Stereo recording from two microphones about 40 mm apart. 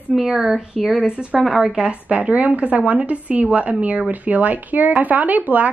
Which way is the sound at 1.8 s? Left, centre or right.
Right.